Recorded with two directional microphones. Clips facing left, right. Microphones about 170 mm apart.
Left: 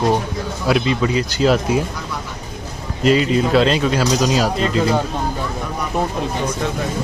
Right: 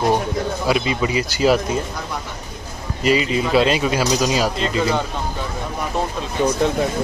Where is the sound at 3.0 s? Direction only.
5° right (ahead or behind).